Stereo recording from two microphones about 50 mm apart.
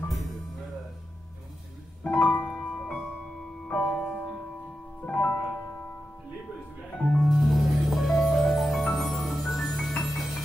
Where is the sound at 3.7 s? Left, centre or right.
Centre.